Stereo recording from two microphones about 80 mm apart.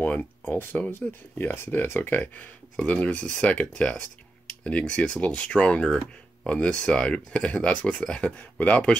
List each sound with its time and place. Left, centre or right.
0.0 s speech: left
2.7 s speech: centre